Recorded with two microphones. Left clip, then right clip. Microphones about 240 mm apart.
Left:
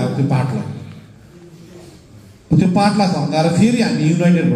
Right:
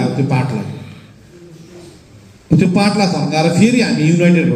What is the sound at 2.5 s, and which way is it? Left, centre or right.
A man's voice, right.